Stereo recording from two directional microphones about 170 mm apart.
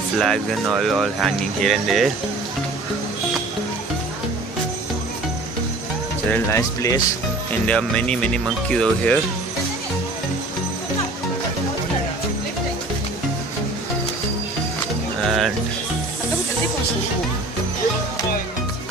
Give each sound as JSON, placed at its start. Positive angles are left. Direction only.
{"t": 0.2, "sound": "speech", "side_deg": 0}
{"t": 6.3, "sound": "speech", "side_deg": 15}
{"t": 7.6, "sound": "speech", "side_deg": 5}
{"t": 15.2, "sound": "a sound", "side_deg": 0}